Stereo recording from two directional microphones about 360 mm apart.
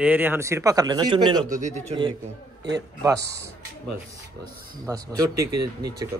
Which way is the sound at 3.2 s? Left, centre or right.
Right.